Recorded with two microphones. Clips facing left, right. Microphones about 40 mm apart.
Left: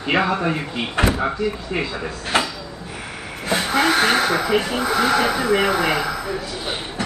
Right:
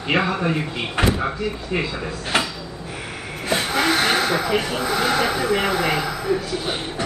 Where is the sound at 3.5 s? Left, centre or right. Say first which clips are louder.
Left 2 dB; centre.